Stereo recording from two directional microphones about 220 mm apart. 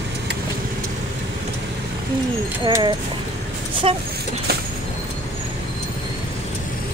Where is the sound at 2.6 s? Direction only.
20° right (ahead or behind).